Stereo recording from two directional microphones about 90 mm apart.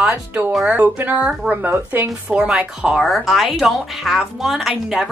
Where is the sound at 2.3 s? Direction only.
10° right (ahead or behind).